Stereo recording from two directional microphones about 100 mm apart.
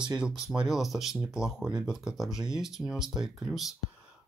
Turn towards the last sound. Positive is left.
turn(degrees=0)  # may be behind; listen again after turning